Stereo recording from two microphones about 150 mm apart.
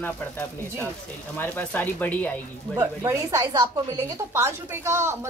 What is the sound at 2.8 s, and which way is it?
A woman's voice, 25° right (ahead or behind).